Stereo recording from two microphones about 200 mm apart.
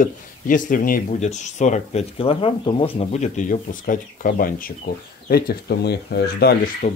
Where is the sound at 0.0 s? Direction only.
40° left (ahead or behind).